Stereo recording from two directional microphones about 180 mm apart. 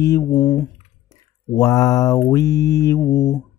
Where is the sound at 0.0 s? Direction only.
15° left (ahead or behind).